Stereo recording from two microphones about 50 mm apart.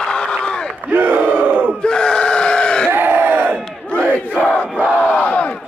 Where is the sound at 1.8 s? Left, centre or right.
Centre.